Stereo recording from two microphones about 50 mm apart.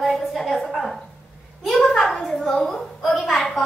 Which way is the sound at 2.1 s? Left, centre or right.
Centre.